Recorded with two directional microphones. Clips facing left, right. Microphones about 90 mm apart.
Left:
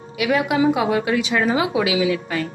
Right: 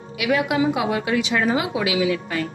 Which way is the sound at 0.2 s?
30° left (ahead or behind).